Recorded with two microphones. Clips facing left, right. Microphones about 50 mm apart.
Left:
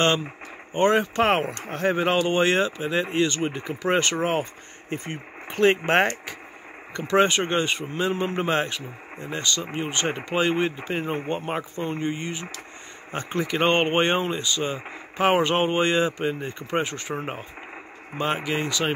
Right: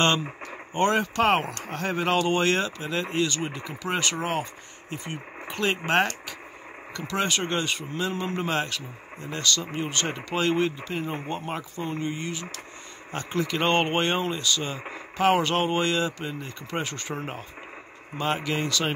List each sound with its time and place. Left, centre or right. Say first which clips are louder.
0.7 s speech: left 3 dB; centre
3.4 s speech: left 6 dB; left
16.8 s speech: left 3 dB; centre